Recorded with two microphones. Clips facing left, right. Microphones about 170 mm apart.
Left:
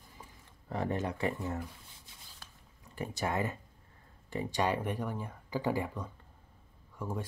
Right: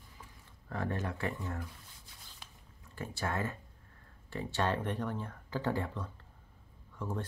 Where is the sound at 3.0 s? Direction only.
15° left (ahead or behind).